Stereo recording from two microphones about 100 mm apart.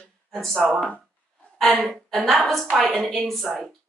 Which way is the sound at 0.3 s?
5° left (ahead or behind).